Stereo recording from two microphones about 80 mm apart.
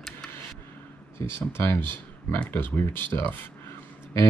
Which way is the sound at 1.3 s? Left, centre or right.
Left.